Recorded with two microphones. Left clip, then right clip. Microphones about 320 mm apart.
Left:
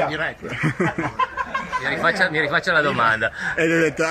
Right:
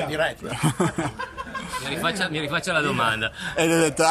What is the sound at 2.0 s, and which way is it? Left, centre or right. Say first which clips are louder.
A man's voice: left 7 dB; centre.